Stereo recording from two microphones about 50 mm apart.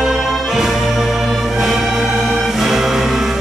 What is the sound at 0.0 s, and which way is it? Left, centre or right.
Music, centre.